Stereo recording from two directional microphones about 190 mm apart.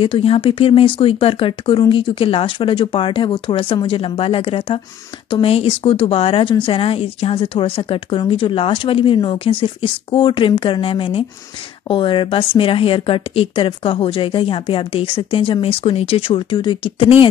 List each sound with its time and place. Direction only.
0.0 s speech: 30° left (ahead or behind)